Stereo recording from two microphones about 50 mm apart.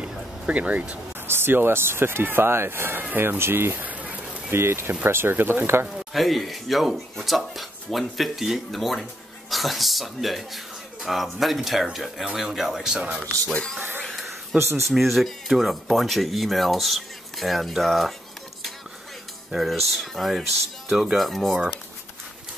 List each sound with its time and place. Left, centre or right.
0.0 s vehicle: right
1.2 s speech: right
3.0 s speech: right
3.8 s a sound: right
4.5 s speech: right
5.9 s speech: centre
14.9 s speech: centre
19.5 s speech: centre
21.2 s speech: centre